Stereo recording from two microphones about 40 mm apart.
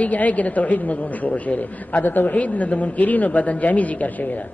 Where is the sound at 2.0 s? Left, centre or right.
Left.